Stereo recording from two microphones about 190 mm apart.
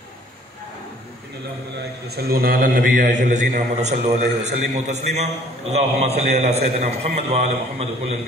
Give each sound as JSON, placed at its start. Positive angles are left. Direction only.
{"t": 2.0, "sound": "a man's voice", "side_deg": -55}